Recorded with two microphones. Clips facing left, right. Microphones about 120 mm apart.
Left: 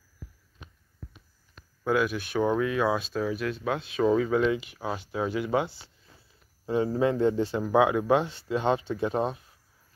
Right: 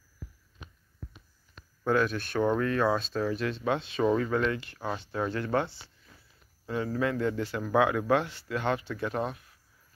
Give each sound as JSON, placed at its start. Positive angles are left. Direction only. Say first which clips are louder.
{"t": 1.9, "sound": "speech", "louder": "left 1 dB", "side_deg": 5}
{"t": 6.6, "sound": "a man's voice", "louder": "left 5 dB", "side_deg": 25}